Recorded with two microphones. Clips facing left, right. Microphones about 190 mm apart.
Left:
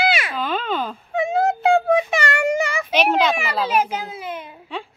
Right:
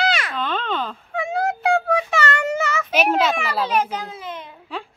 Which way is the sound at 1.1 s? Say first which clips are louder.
Left 4 dB; 20° left (ahead or behind).